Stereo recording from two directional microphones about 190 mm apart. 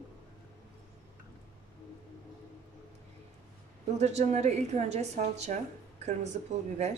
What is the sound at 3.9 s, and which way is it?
Speech, 35° right (ahead or behind).